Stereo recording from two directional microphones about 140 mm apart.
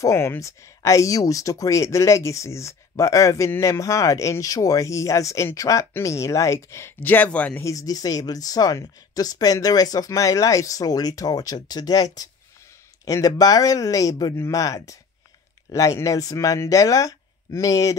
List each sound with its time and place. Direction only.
0.0 s speech: 20° left (ahead or behind)
7.6 s speech: 25° left (ahead or behind)